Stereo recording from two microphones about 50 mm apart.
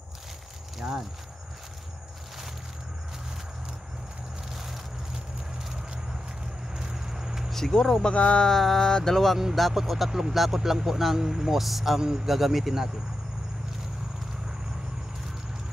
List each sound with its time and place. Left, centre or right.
0.7 s speech: centre
4.5 s a sound: centre
6.7 s vehicle: centre
7.5 s speech: centre
8.0 s speech: left
8.5 s a sound: centre
9.6 s speech: centre